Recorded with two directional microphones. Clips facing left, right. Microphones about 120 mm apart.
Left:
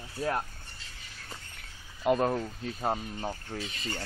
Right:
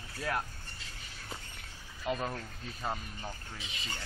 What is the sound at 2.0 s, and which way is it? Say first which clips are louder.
Speech: left 9 dB; 50° left (ahead or behind).